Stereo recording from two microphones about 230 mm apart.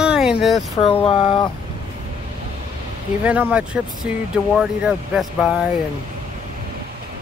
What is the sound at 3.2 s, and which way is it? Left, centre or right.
Speech, centre.